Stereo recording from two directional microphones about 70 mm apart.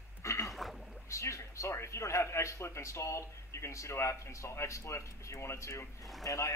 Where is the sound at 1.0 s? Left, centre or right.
Left.